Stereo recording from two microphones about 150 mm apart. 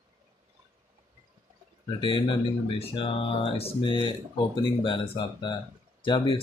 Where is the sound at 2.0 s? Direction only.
30° left (ahead or behind).